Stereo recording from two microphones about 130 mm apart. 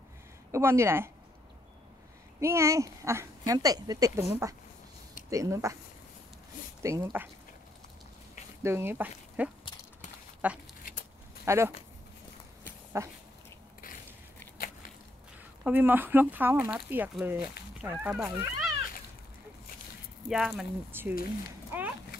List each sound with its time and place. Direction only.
0.5 s speech: 20° right (ahead or behind)
2.4 s speech: 20° right (ahead or behind)
6.8 s speech: 25° right (ahead or behind)
8.6 s speech: 20° right (ahead or behind)
13.0 s speech: 20° right (ahead or behind)
15.6 s speech: 15° right (ahead or behind)
20.2 s speech: 5° right (ahead or behind)
20.9 s speech: 15° right (ahead or behind)
21.7 s a sound: 15° right (ahead or behind)